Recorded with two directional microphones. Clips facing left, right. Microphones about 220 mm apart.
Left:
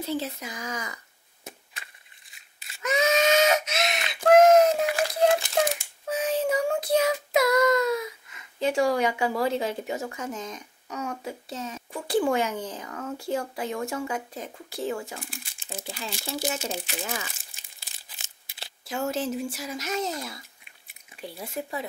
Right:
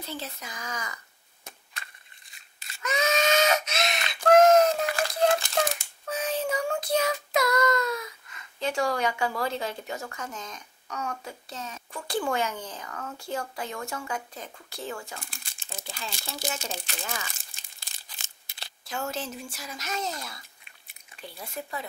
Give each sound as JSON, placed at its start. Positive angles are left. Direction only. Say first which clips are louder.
{"t": 0.0, "sound": "speech", "louder": "left 8 dB", "side_deg": 5}
{"t": 1.4, "sound": "chop", "louder": "left 3 dB", "side_deg": 5}
{"t": 2.3, "sound": "a sound", "louder": "right 1 dB", "side_deg": 5}
{"t": 6.8, "sound": "child singing", "louder": "left 3 dB", "side_deg": 5}
{"t": 9.4, "sound": "speech", "louder": "left 5 dB", "side_deg": 5}
{"t": 9.8, "sound": "speech", "louder": "left 5 dB", "side_deg": 15}
{"t": 10.2, "sound": "speech", "louder": "left 5 dB", "side_deg": 5}
{"t": 10.9, "sound": "speech", "louder": "left 2 dB", "side_deg": 20}
{"t": 11.2, "sound": "speech", "louder": "left 5 dB", "side_deg": 5}
{"t": 12.8, "sound": "speech", "louder": "left 5 dB", "side_deg": 20}
{"t": 14.3, "sound": "speech", "louder": "left 5 dB", "side_deg": 5}